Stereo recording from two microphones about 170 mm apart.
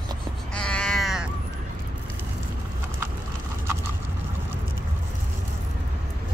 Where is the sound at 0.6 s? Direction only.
5° left (ahead or behind).